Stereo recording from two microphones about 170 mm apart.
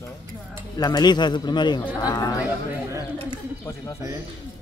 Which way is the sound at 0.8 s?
25° left (ahead or behind).